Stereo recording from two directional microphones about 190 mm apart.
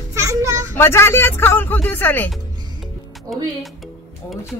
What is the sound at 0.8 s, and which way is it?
Speech, 15° left (ahead or behind).